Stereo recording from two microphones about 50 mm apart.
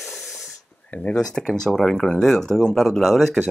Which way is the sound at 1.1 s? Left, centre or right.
Centre.